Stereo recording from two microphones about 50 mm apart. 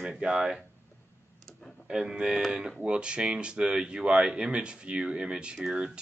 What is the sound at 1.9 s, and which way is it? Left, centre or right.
Speech, centre.